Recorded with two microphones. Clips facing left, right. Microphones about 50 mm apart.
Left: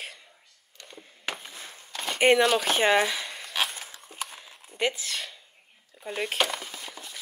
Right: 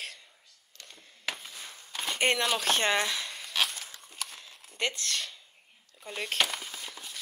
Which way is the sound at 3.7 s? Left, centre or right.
Centre.